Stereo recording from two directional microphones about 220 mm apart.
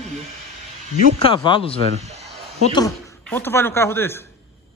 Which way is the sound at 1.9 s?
30° right (ahead or behind).